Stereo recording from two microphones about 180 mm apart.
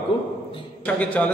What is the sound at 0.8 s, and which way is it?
Speech, 5° left (ahead or behind).